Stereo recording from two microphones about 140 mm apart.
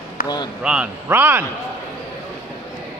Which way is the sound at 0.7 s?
5° right (ahead or behind).